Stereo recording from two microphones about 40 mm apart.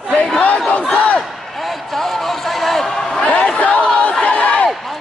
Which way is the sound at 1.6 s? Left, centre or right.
Centre.